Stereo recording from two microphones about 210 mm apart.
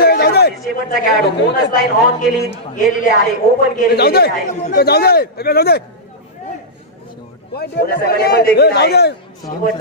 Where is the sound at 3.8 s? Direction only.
45° left (ahead or behind).